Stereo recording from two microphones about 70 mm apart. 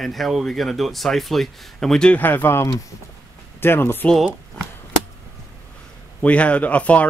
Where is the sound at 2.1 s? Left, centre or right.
Left.